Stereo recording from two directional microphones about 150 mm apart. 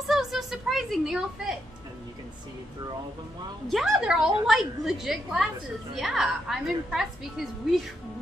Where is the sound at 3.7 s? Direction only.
5° right (ahead or behind).